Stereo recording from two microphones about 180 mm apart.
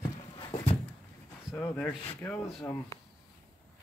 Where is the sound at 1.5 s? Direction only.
10° left (ahead or behind).